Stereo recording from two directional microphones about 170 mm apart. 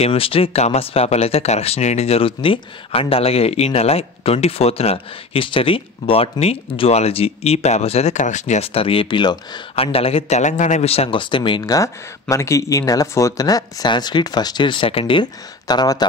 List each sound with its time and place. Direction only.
0.0 s speech: 35° left (ahead or behind)